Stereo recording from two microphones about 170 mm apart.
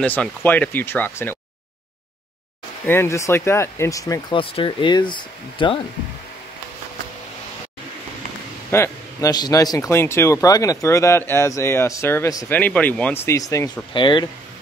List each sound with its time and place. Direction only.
0.0 s speech: 10° left (ahead or behind)
2.9 s speech: 15° left (ahead or behind)
8.6 s speech: 15° left (ahead or behind)